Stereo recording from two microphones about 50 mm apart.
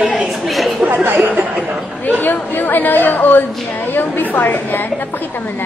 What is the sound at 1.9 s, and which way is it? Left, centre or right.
A woman's voice, left.